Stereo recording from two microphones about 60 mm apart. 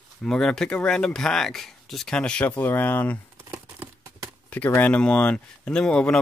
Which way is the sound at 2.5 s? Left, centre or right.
Left.